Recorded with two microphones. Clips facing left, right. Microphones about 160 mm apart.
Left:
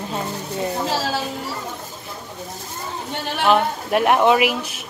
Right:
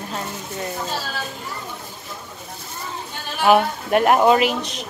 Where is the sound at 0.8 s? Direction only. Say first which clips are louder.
Left 6 dB; 90° left.